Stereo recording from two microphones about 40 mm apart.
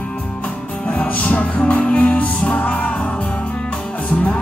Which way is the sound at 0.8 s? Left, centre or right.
Left.